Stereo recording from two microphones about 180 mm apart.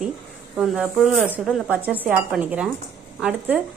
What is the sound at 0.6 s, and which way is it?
A woman's voice, centre (ahead or behind).